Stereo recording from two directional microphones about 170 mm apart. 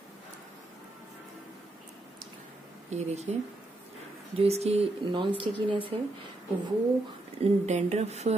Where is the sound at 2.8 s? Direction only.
40° right (ahead or behind).